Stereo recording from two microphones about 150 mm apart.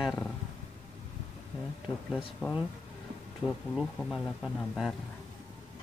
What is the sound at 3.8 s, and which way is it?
Speech, centre (ahead or behind).